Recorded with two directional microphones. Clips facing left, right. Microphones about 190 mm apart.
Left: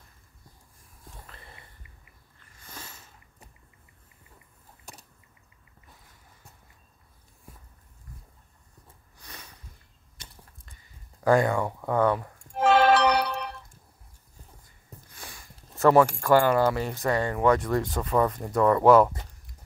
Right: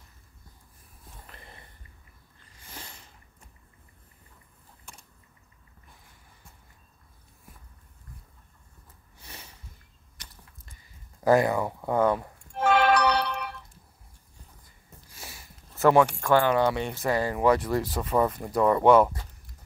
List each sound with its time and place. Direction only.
2.7 s sniff: 30° right (ahead or behind)
4.9 s a sound: 40° left (ahead or behind)
9.2 s sniff: 25° right (ahead or behind)
11.3 s speech: 10° right (ahead or behind)
12.7 s music: 30° left (ahead or behind)
13.1 s a sound: 40° left (ahead or behind)
15.7 s speech: centre (ahead or behind)